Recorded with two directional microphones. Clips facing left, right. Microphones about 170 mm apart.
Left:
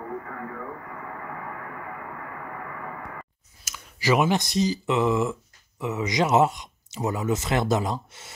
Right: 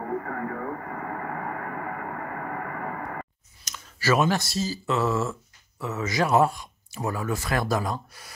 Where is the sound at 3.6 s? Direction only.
15° left (ahead or behind).